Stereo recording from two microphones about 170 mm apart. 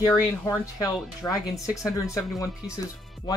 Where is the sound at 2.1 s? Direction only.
20° left (ahead or behind).